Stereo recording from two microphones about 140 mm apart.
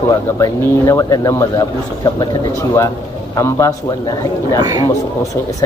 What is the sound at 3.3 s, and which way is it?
Speech, 20° left (ahead or behind).